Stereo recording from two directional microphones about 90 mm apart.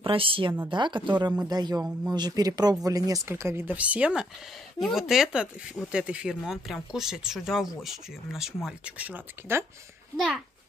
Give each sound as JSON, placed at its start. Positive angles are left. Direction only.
{"t": 0.0, "sound": "speech", "side_deg": -90}
{"t": 0.7, "sound": "speech", "side_deg": -60}
{"t": 1.5, "sound": "speech", "side_deg": -45}
{"t": 3.3, "sound": "speech", "side_deg": -30}
{"t": 3.7, "sound": "speech", "side_deg": -15}
{"t": 8.9, "sound": "speech", "side_deg": -20}
{"t": 10.1, "sound": "speech", "side_deg": 0}